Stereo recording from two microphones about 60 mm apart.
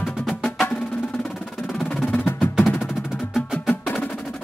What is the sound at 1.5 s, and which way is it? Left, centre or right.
Music, centre.